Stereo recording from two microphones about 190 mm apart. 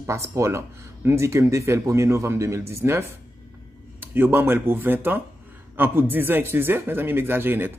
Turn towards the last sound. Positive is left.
turn(degrees=-10)  # may be behind; listen again after turning